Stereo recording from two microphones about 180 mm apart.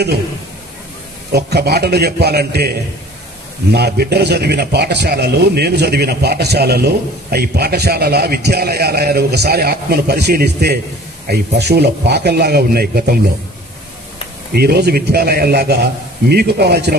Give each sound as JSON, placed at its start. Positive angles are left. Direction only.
{"t": 1.3, "sound": "a man's voice", "side_deg": -65}
{"t": 14.5, "sound": "a man's voice", "side_deg": -60}